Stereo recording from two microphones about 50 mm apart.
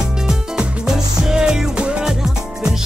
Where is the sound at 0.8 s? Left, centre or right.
Centre.